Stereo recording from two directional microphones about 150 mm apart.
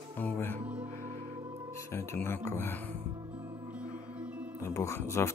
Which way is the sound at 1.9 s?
15° left (ahead or behind).